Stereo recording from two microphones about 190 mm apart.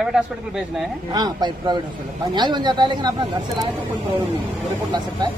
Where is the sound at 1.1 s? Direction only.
20° right (ahead or behind).